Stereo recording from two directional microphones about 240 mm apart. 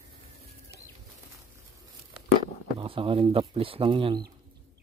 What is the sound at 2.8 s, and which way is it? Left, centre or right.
Speech, right.